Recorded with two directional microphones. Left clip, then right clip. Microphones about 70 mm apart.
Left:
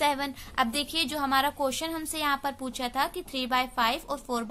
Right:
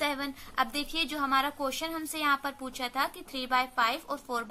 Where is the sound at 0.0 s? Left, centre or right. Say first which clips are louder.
Left 5 dB; left.